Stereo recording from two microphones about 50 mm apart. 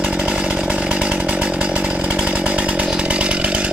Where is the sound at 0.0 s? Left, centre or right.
Centre.